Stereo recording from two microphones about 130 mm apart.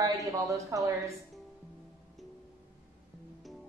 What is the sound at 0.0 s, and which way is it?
Speech, 25° right (ahead or behind).